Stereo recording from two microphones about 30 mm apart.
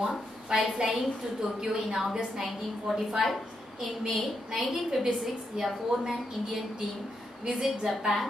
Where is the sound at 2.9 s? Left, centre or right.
Centre.